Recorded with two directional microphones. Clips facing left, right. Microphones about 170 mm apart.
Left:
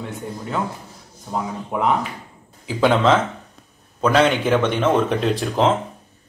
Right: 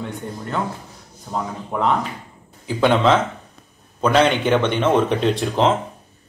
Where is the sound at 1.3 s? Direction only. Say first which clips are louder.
Left 1 dB; 5° left (ahead or behind).